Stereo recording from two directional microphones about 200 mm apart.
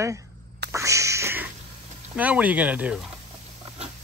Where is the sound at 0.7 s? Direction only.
15° right (ahead or behind).